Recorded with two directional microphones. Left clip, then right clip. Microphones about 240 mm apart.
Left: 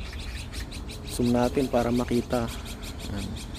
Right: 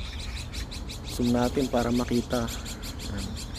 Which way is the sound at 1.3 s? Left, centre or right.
Centre.